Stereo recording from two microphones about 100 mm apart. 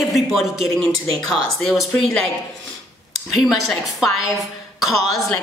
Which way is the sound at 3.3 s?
Centre (ahead or behind).